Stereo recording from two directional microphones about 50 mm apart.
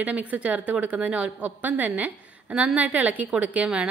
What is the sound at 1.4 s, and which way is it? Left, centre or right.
A woman's voice, right.